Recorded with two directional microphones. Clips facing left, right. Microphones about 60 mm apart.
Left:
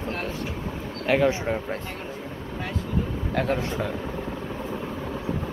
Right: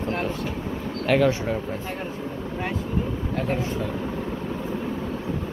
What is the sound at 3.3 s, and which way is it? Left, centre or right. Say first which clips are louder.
Speech: left 2 dB; left.